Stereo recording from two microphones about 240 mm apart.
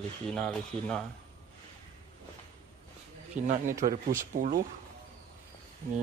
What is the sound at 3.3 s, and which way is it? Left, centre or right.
A man's voice, right.